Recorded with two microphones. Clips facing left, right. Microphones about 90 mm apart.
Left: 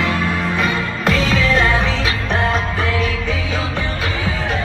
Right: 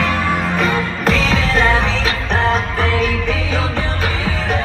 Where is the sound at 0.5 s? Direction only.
25° right (ahead or behind).